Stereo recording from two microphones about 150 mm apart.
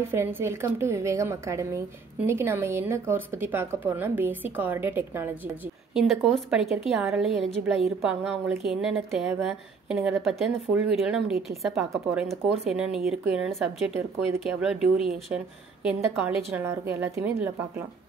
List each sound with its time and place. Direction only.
0.1 s a woman's voice: 15° right (ahead or behind)
5.9 s a woman's voice: centre (ahead or behind)